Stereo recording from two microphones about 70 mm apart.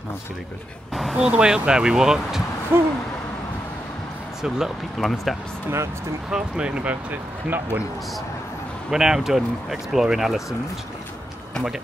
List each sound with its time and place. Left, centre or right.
1.1 s speech: centre
2.7 s a sound: right
4.4 s speech: centre
6.3 s speech: centre
8.9 s speech: centre